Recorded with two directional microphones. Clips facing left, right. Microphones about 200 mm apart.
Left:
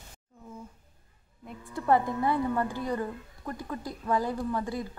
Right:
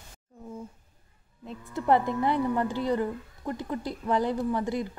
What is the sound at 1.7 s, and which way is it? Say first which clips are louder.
Speech: right 1 dB; 20° right (ahead or behind).